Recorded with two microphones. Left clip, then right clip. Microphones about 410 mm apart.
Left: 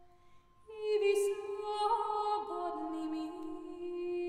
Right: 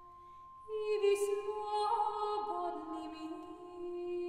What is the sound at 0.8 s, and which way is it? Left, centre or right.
Music, centre.